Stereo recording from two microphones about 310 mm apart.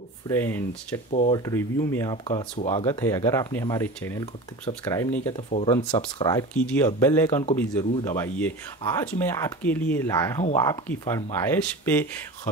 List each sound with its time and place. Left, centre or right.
0.3 s speech: centre
1.1 s speech: left
1.4 s speech: centre